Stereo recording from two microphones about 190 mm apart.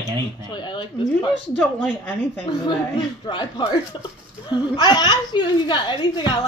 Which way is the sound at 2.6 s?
25° left (ahead or behind).